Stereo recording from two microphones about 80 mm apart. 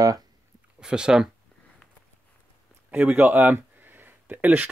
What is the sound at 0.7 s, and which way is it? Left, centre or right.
Speech, centre.